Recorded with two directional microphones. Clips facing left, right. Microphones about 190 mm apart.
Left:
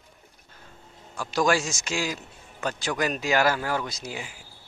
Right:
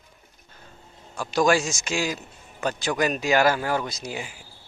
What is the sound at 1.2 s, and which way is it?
A man's voice, 20° right (ahead or behind).